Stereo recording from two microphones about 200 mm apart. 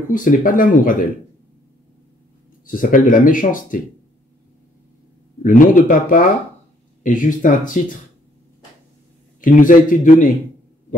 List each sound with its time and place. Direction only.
0.1 s speech: 40° left (ahead or behind)
2.6 s speech: 40° left (ahead or behind)
5.4 s speech: 40° left (ahead or behind)
9.4 s speech: 40° left (ahead or behind)